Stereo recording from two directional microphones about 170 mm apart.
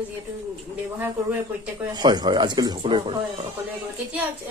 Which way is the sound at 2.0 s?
25° right (ahead or behind).